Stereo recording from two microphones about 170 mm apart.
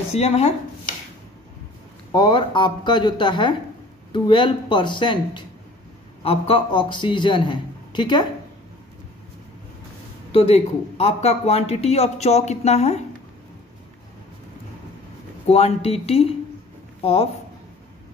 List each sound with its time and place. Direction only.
0.1 s speech: 35° left (ahead or behind)
2.1 s a man's voice: 25° left (ahead or behind)
10.3 s speech: 35° left (ahead or behind)
15.4 s speech: 35° left (ahead or behind)